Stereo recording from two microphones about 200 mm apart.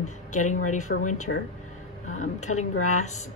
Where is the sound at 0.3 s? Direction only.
40° left (ahead or behind).